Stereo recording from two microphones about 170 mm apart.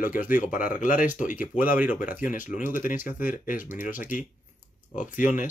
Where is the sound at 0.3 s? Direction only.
50° left (ahead or behind).